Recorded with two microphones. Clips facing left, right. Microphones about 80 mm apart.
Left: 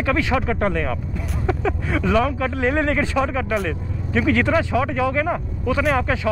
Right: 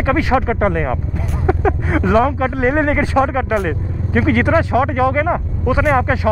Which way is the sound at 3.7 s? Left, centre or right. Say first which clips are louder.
Right 4 dB; right.